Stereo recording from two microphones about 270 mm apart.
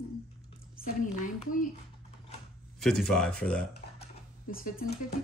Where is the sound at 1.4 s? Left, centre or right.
Left.